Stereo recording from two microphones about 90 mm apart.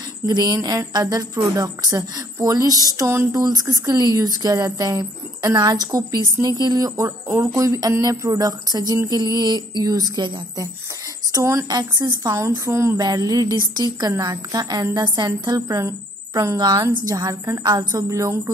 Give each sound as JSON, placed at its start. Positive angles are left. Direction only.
{"t": 0.3, "sound": "a woman's voice", "side_deg": -45}
{"t": 3.0, "sound": "speech", "side_deg": -30}
{"t": 3.4, "sound": "a woman's voice", "side_deg": -40}
{"t": 7.0, "sound": "a woman's voice", "side_deg": -30}
{"t": 11.3, "sound": "a woman's voice", "side_deg": -35}